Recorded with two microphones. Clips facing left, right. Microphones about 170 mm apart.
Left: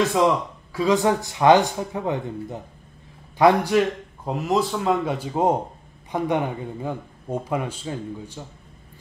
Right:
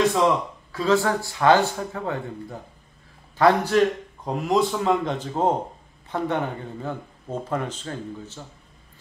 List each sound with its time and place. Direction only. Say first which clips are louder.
0.7 s speech: left 1 dB; 15° left (ahead or behind)